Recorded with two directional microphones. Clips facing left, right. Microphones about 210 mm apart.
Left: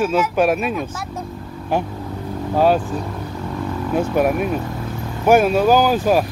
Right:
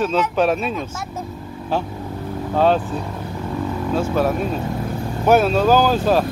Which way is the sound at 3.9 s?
15° left (ahead or behind).